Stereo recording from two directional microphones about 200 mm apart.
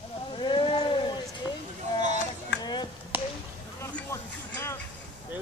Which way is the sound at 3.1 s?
10° right (ahead or behind).